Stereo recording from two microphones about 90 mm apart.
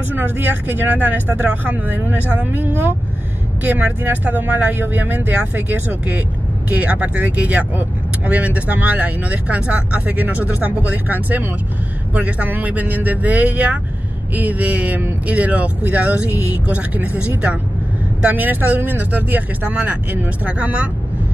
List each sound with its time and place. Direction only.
0.1 s speech: 20° right (ahead or behind)